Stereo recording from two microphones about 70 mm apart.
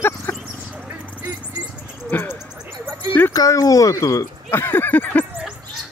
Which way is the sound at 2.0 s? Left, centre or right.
Left.